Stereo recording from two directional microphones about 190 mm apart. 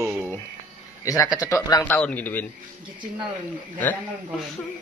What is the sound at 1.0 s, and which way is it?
Speech, 20° left (ahead or behind).